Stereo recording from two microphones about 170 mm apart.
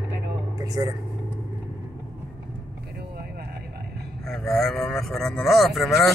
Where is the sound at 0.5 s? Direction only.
20° right (ahead or behind).